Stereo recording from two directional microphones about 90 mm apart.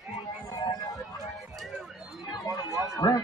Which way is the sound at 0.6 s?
50° left (ahead or behind).